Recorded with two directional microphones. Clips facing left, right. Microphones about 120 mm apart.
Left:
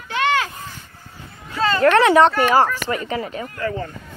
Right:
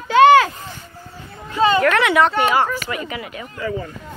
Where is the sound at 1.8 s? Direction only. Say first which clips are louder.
Left 3 dB; 35° left (ahead or behind).